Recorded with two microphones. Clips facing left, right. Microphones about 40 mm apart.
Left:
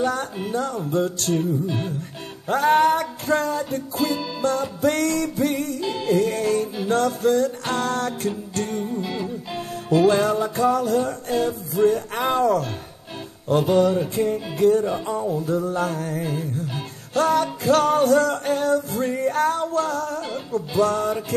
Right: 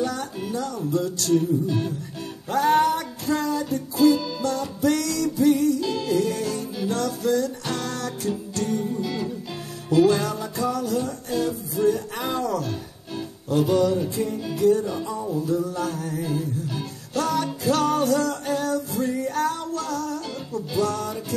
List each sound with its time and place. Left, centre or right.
0.0 s music: left
8.8 s music: centre
9.8 s music: left